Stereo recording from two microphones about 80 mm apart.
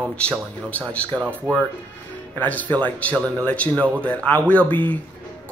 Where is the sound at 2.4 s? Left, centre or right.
Centre.